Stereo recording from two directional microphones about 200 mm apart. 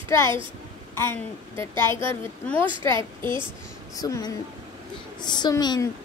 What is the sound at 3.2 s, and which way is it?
Speech, 25° right (ahead or behind).